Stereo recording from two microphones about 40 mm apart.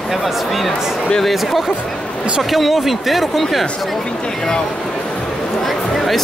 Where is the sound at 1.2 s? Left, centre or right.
Centre.